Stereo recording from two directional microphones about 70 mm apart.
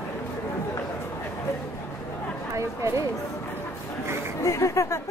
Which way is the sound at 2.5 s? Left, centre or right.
Right.